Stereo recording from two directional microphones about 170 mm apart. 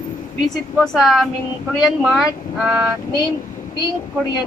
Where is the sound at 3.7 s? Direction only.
25° left (ahead or behind).